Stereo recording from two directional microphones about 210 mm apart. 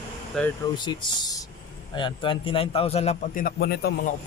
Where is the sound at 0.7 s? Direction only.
20° left (ahead or behind).